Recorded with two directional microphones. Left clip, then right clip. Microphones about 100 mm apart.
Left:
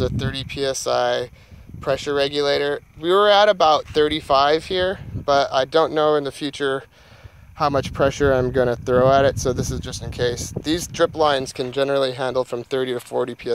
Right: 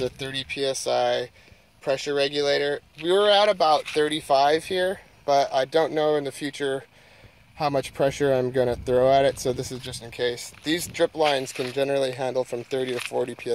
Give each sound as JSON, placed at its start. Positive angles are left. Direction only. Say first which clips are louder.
{"t": 0.0, "sound": "speech", "louder": "left 3 dB", "side_deg": 20}